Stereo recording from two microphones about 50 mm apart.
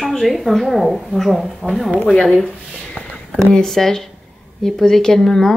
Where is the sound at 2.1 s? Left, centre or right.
Centre.